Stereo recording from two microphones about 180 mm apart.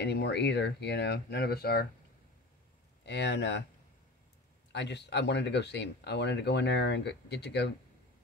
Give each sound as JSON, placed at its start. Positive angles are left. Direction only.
{"t": 0.0, "sound": "speech", "side_deg": 70}
{"t": 3.1, "sound": "speech", "side_deg": 70}
{"t": 4.7, "sound": "speech", "side_deg": 75}